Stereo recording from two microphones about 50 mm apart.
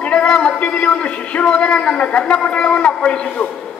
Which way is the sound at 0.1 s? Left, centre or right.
Left.